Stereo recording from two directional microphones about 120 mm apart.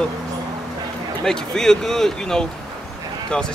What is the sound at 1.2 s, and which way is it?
Speech, 5° left (ahead or behind).